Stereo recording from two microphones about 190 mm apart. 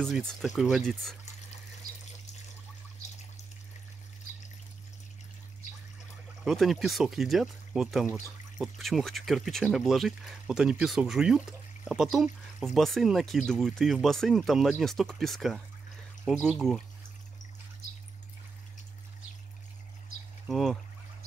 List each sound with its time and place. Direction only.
0.0 s speech: 5° left (ahead or behind)
6.4 s speech: centre (ahead or behind)
20.4 s speech: centre (ahead or behind)